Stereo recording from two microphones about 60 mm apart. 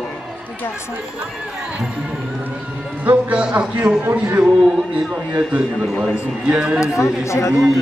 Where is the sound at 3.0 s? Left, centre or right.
Right.